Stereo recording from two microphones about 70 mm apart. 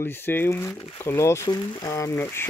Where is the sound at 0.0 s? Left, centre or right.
Left.